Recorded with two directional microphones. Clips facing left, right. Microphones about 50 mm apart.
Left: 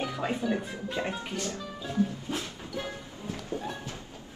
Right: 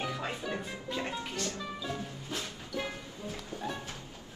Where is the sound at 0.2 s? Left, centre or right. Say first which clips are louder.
Left 6 dB; centre.